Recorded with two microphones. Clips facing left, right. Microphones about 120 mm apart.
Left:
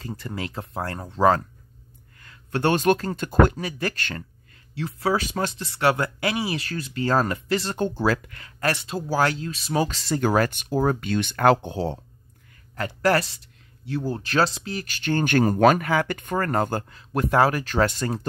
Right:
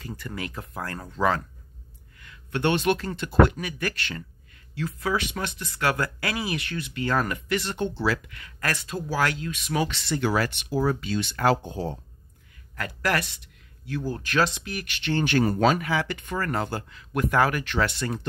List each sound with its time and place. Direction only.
0.0 s speech: 30° left (ahead or behind)
3.5 s speech: 30° left (ahead or behind); by 12.0 s 75° left (ahead or behind)
12.7 s speech: 30° left (ahead or behind)